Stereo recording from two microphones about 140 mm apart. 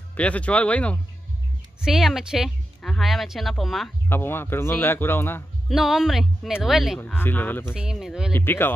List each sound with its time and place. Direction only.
0.1 s a man's voice: 10° left (ahead or behind)
1.9 s speech: centre (ahead or behind)
4.1 s a man's voice: 15° left (ahead or behind)
5.7 s speech: 5° right (ahead or behind)
7.2 s a man's voice: 15° left (ahead or behind)
7.7 s speech: 5° right (ahead or behind)
8.3 s a man's voice: 15° left (ahead or behind)